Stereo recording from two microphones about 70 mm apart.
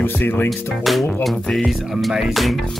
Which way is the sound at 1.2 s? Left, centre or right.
Centre.